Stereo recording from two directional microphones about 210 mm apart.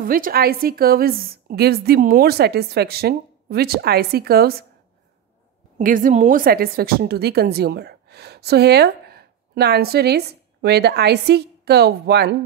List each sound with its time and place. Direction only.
0.0 s a woman's voice: 45° right (ahead or behind)
5.8 s a woman's voice: 40° right (ahead or behind)